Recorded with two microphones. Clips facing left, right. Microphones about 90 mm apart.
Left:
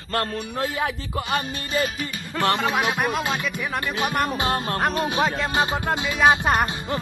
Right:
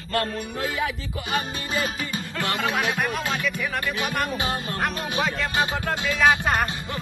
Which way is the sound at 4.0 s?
35° left (ahead or behind).